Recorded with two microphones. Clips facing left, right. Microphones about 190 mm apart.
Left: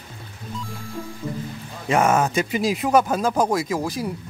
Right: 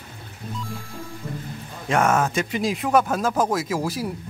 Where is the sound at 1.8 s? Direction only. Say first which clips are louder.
Left 2 dB; centre (ahead or behind).